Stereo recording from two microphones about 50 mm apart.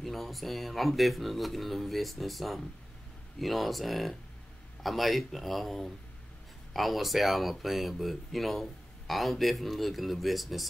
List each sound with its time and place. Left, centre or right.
0.0 s speech: centre